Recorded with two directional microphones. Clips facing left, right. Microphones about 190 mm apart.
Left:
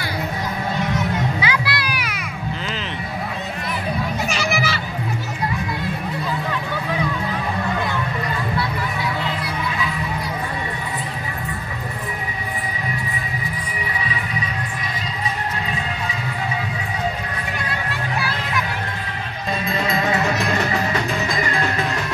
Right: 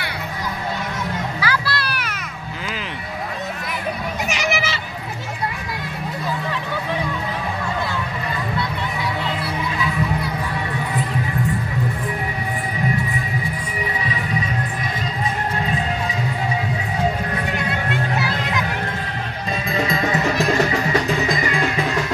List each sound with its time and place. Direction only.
1.4 s music: 20° left (ahead or behind)
4.3 s children playing: 20° right (ahead or behind)
18.1 s music: 20° right (ahead or behind)